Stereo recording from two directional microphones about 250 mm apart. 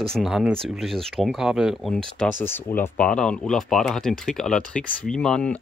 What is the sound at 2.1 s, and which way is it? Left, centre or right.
Speech, centre.